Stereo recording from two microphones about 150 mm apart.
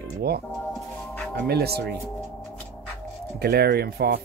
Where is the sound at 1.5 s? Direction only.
90° right.